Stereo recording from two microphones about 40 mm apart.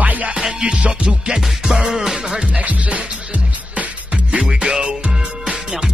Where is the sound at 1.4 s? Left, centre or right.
Centre.